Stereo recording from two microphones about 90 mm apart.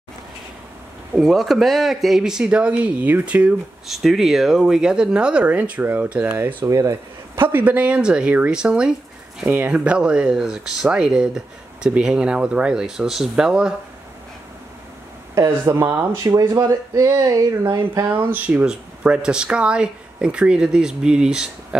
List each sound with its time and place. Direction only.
1.1 s speech: 5° right (ahead or behind)
3.8 s speech: centre (ahead or behind); by 7.4 s 35° right (ahead or behind)
7.4 s speech: 20° right (ahead or behind)
15.3 s speech: 30° right (ahead or behind); by 17.8 s 45° right (ahead or behind)
18.1 s speech: 20° right (ahead or behind)